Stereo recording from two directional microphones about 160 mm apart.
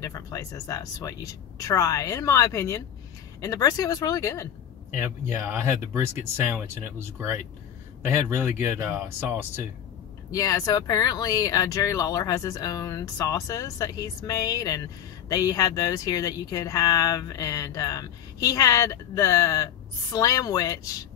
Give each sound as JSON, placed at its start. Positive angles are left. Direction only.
{"t": 0.0, "sound": "speech", "side_deg": 20}
{"t": 4.9, "sound": "speech", "side_deg": -15}
{"t": 10.3, "sound": "speech", "side_deg": 20}